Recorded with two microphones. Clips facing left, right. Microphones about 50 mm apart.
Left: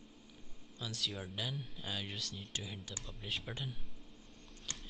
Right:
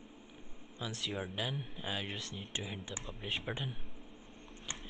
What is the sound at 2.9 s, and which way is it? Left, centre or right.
Speech, right.